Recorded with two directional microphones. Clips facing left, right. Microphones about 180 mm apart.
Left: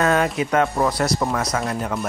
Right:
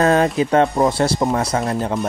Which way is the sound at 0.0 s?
30° right (ahead or behind).